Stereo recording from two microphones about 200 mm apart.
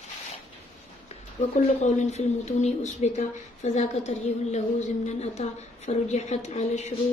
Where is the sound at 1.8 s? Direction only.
35° left (ahead or behind).